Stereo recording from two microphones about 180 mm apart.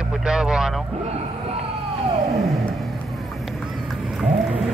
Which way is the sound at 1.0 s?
35° right (ahead or behind).